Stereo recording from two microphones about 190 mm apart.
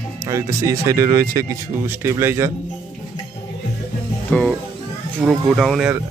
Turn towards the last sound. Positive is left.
turn(degrees=0)  # may be behind; listen again after turning